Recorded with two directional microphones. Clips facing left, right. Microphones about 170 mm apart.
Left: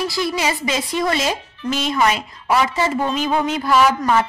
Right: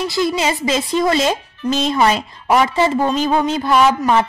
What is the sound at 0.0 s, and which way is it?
Speech, 25° right (ahead or behind).